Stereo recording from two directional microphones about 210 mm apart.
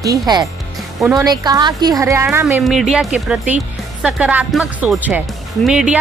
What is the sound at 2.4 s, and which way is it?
Speech, centre (ahead or behind).